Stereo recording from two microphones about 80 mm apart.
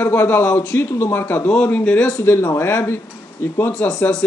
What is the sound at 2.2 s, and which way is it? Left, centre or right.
Speech, left.